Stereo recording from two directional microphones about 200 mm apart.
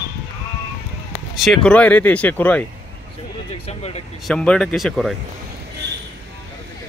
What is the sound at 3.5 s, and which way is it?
Speech, 30° left (ahead or behind).